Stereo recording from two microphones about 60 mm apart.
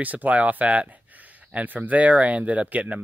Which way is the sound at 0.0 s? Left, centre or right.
Right.